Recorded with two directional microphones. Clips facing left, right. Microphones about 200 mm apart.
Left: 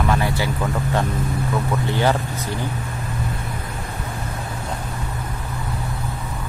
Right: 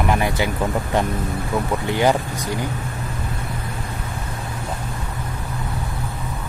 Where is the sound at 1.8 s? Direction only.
15° right (ahead or behind).